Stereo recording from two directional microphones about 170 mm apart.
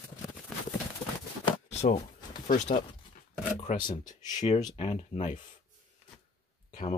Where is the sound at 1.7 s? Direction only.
40° left (ahead or behind).